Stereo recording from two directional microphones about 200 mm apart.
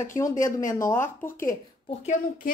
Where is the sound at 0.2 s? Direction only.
15° left (ahead or behind).